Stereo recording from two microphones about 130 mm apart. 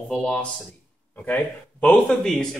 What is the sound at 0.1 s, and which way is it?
Speech, 5° left (ahead or behind).